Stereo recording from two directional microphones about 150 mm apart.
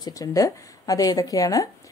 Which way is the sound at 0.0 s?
25° left (ahead or behind).